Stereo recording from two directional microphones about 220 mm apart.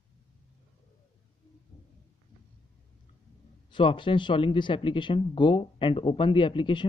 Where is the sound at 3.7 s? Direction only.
20° left (ahead or behind).